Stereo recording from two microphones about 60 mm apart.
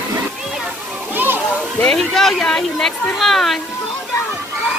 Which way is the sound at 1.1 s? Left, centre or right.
Right.